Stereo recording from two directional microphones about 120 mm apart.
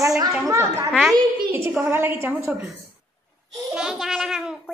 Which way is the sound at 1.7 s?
15° right (ahead or behind).